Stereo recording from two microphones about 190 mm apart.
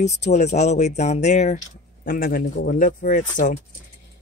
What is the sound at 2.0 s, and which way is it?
Speech, 50° left (ahead or behind).